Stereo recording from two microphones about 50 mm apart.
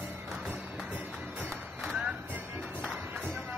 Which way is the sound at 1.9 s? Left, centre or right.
Centre.